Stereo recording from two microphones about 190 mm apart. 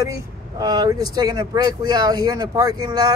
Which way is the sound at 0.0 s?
20° right (ahead or behind).